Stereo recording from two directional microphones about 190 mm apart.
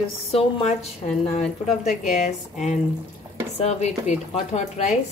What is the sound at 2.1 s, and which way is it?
A woman's voice, 40° left (ahead or behind).